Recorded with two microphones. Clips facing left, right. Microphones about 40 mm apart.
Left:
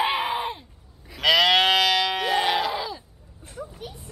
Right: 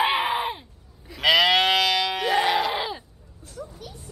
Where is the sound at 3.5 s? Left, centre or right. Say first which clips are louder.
Left 2 dB; left.